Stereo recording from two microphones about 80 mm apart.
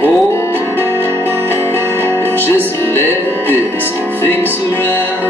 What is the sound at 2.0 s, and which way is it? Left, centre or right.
Music, left.